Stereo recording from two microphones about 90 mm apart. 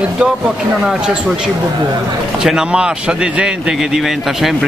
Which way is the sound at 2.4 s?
10° right (ahead or behind).